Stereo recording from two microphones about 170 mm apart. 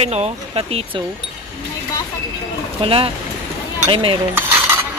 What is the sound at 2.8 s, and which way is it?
Speech, 30° right (ahead or behind).